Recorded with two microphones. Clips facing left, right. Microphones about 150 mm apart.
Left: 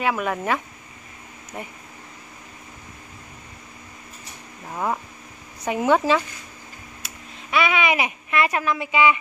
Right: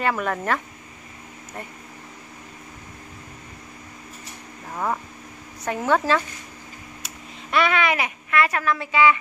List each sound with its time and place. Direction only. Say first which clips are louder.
0.0 s speech: even; 5° left (ahead or behind)
4.6 s speech: left 1 dB; 10° left (ahead or behind)
7.5 s speech: even; 10° left (ahead or behind)